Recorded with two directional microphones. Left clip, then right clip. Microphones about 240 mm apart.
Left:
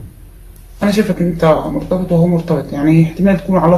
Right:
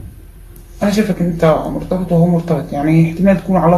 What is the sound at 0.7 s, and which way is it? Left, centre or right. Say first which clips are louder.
Speech: left 1 dB; centre.